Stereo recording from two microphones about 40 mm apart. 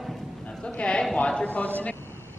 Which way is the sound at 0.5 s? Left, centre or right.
Left.